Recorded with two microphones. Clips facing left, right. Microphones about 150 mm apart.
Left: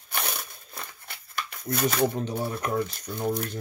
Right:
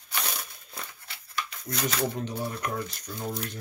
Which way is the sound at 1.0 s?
55° left (ahead or behind).